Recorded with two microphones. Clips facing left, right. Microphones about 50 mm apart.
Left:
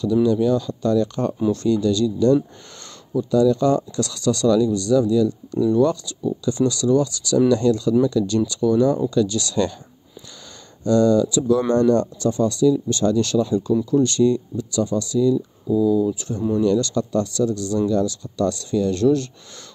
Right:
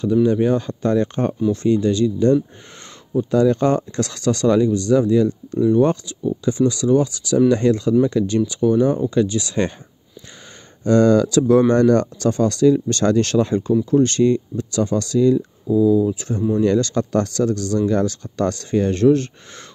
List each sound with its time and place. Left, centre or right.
0.0 s speech: right
10.8 s speech: right